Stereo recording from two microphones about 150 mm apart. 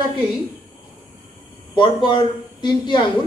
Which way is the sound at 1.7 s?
30° left (ahead or behind).